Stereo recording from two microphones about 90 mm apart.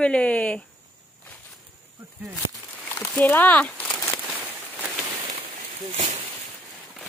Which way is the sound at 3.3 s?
20° left (ahead or behind).